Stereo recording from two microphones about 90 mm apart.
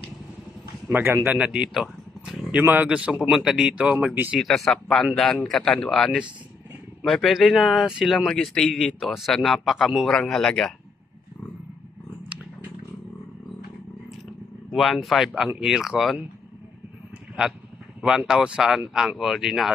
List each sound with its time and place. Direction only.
0.8 s speech: 25° right (ahead or behind)
1.3 s speech: 10° right (ahead or behind)
2.5 s speech: 20° right (ahead or behind)
3.1 s speech: 5° right (ahead or behind)
4.4 s a man's voice: 5° left (ahead or behind)
14.7 s a man's voice: centre (ahead or behind)
18.0 s a man's voice: 10° right (ahead or behind)